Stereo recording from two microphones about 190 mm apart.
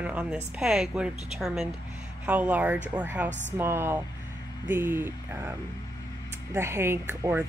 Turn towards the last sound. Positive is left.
turn(degrees=-10)  # may be behind; listen again after turning